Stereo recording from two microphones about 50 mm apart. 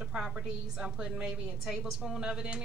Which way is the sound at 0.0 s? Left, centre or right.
Centre.